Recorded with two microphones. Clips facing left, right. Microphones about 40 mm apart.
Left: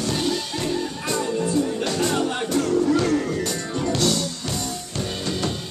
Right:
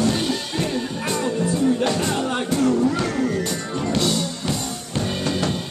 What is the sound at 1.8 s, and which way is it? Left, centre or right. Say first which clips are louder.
Music: right 1 dB; centre.